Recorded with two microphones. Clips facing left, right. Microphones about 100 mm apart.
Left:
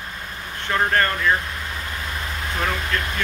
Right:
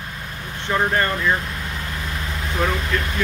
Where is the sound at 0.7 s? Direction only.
15° right (ahead or behind).